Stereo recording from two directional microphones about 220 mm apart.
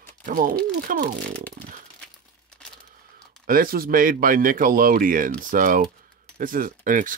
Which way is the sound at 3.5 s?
40° right (ahead or behind).